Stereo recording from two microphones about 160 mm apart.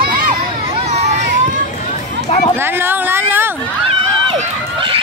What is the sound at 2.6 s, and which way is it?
Speech, 15° right (ahead or behind).